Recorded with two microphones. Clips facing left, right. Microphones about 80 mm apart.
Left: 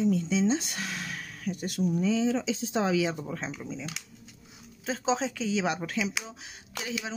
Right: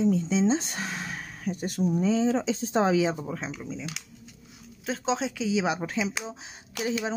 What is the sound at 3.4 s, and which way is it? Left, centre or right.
Speech, centre.